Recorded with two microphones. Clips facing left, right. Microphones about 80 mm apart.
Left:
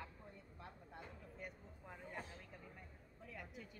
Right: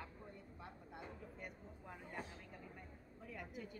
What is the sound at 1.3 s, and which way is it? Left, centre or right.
Speech, centre.